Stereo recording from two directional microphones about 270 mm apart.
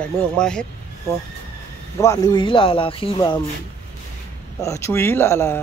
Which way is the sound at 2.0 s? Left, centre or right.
Centre.